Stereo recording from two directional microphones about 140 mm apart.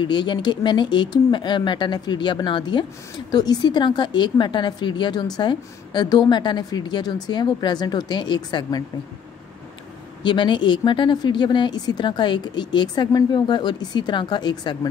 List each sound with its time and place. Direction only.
0.0 s a woman's voice: 35° left (ahead or behind)
10.2 s a woman's voice: 35° left (ahead or behind)